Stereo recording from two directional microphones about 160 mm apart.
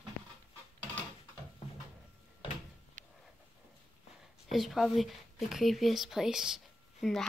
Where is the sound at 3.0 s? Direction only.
55° right (ahead or behind).